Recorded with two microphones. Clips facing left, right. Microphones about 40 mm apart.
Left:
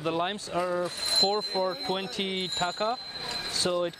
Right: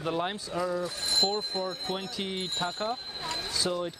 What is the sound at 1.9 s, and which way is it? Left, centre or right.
Speech, left.